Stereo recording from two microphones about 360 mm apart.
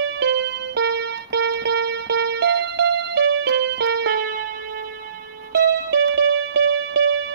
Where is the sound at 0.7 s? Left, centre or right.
Right.